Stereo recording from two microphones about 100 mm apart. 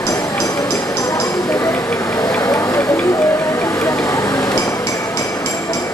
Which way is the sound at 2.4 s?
35° left (ahead or behind).